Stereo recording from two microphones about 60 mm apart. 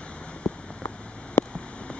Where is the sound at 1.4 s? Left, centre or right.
Left.